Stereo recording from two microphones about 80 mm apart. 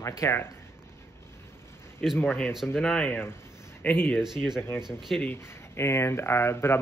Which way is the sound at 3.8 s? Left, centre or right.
Left.